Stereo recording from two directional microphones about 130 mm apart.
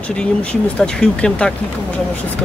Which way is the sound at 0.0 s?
10° left (ahead or behind).